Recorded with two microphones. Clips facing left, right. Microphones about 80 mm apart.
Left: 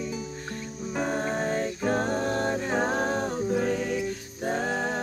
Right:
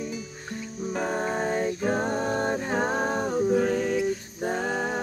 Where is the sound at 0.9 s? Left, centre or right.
Centre.